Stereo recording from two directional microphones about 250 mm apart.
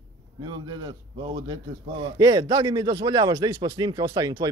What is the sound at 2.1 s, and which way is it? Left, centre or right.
Speech, centre.